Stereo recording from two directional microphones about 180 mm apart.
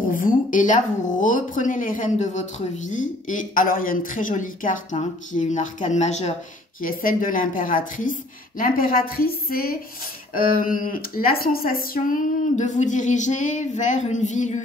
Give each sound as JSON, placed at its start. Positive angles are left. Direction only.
{"t": 0.1, "sound": "speech", "side_deg": 50}
{"t": 6.8, "sound": "speech", "side_deg": 50}